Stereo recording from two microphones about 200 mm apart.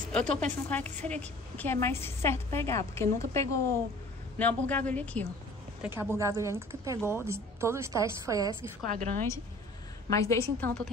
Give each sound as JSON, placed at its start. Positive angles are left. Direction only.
{"t": 0.1, "sound": "a woman's voice", "side_deg": 5}
{"t": 5.8, "sound": "speech", "side_deg": -10}
{"t": 8.8, "sound": "a woman's voice", "side_deg": -40}
{"t": 10.1, "sound": "a woman's voice", "side_deg": 15}